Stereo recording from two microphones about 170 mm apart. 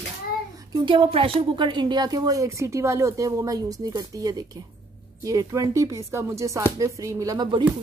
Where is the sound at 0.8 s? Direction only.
30° right (ahead or behind).